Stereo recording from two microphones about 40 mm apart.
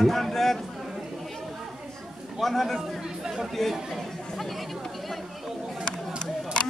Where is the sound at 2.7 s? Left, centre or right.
Centre.